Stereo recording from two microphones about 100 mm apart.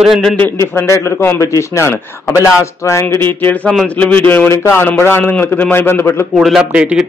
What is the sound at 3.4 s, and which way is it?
A man's voice, 15° left (ahead or behind).